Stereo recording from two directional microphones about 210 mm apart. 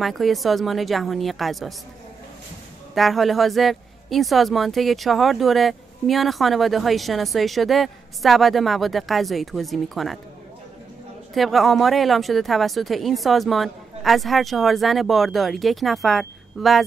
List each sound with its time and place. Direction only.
0.0 s speech: centre (ahead or behind)
2.9 s speech: centre (ahead or behind)
11.3 s speech: centre (ahead or behind)